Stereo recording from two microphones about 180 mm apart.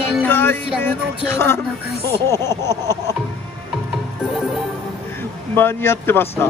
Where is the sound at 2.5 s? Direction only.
20° right (ahead or behind).